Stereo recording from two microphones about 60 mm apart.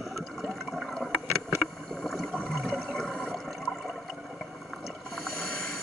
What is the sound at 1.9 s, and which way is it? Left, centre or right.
Boat, centre.